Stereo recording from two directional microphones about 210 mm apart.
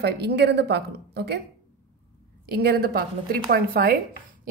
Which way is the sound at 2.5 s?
50° right (ahead or behind).